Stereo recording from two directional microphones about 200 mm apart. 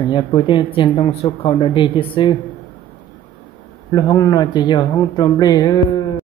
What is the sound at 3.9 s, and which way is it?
Speech, 20° left (ahead or behind).